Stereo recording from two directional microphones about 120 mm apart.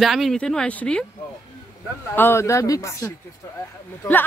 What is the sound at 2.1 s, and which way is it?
A woman's voice, 20° left (ahead or behind).